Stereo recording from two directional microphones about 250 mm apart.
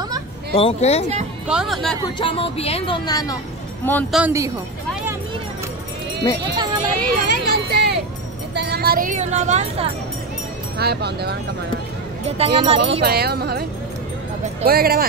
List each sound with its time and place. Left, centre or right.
0.6 s speech: left
1.5 s speech: centre
2.1 s speech: left
4.2 s speech: centre
6.4 s speech: centre
6.8 s a sound: right
8.5 s speech: right
10.8 s speech: right
12.3 s speech: right
13.0 s speech: right
14.7 s speech: right